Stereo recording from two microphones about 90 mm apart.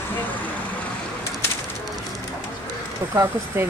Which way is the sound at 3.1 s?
30° right (ahead or behind).